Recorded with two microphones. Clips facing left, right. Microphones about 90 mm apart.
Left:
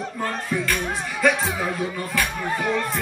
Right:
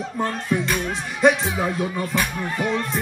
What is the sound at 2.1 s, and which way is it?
Speech, 20° right (ahead or behind).